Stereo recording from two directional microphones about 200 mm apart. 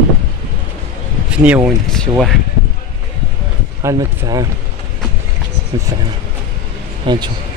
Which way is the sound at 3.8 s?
15° right (ahead or behind).